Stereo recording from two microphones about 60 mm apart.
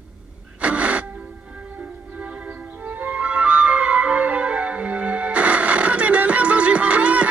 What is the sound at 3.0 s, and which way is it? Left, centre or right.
Music, centre.